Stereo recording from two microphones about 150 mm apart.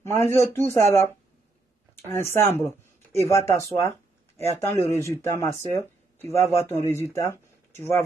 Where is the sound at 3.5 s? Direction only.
20° left (ahead or behind).